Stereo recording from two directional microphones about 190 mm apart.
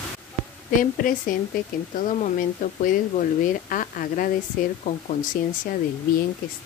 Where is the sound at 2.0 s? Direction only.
40° left (ahead or behind).